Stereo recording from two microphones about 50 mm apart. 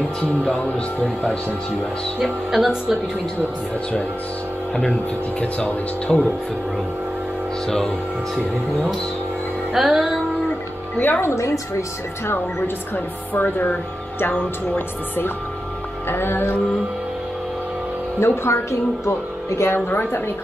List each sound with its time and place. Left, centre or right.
0.7 s speech: left
2.1 s speech: centre
6.1 s music: centre
7.6 s speech: centre
9.7 s music: centre
11.0 s speech: left
11.2 s a woman's voice: left
12.3 s speech: left
16.1 s music: left
18.2 s speech: left
19.9 s music: left